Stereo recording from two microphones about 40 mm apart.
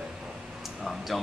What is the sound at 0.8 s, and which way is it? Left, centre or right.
Speech, centre.